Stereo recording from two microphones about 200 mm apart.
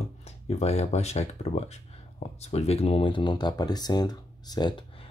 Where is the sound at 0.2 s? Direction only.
30° left (ahead or behind).